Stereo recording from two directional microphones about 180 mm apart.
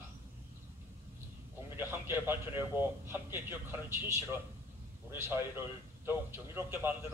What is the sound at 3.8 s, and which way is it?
A man's voice, 15° right (ahead or behind).